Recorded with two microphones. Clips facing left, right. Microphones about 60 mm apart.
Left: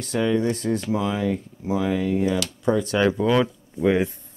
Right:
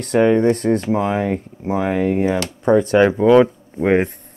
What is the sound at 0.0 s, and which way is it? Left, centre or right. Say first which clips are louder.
Speech: right 8 dB; right.